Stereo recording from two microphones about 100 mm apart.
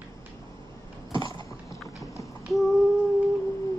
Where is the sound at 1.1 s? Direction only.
55° right (ahead or behind).